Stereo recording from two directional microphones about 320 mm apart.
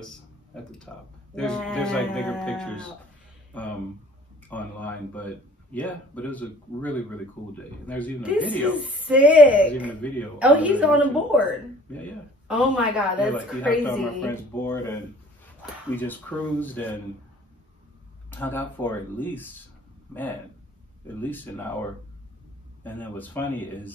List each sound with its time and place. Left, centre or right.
0.9 s speech: centre
18.4 s speech: centre
21.2 s speech: centre
22.8 s speech: centre